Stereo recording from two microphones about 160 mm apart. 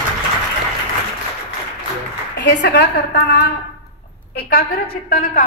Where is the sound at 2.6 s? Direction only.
90° left.